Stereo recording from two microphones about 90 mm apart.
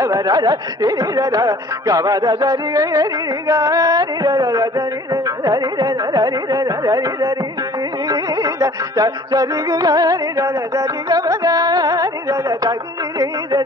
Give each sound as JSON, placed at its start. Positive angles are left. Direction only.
{"t": 0.0, "sound": "speech", "side_deg": -45}
{"t": 8.1, "sound": "music", "side_deg": -40}
{"t": 13.2, "sound": "speech", "side_deg": -40}